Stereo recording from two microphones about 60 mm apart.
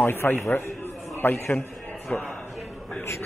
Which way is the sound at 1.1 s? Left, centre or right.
Left.